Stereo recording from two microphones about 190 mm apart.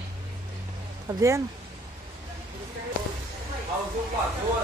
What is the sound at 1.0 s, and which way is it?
Speech, 15° right (ahead or behind).